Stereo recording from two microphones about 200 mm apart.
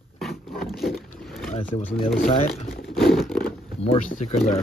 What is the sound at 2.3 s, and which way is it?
Speech, 30° left (ahead or behind).